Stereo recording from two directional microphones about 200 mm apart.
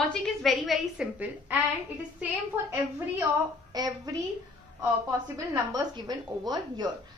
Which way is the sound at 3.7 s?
20° right (ahead or behind).